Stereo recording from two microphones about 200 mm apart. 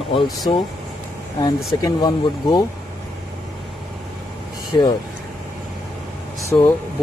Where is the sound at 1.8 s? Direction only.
20° left (ahead or behind).